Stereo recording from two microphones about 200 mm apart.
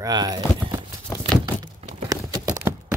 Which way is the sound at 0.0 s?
20° right (ahead or behind).